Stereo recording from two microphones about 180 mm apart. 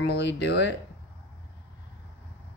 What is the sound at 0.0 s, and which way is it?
Speech, 75° left (ahead or behind).